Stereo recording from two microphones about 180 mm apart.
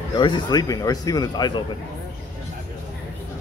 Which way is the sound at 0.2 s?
25° left (ahead or behind).